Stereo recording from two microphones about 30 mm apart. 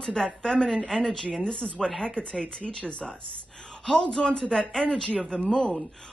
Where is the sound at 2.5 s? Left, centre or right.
Left.